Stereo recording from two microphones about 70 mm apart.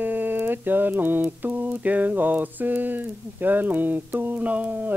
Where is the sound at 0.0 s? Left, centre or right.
Right.